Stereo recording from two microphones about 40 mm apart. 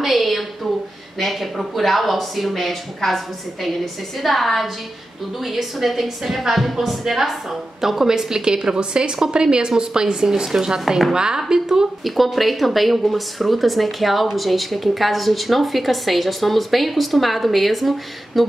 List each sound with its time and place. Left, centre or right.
0.0 s a woman's voice: centre
12.0 s speech: centre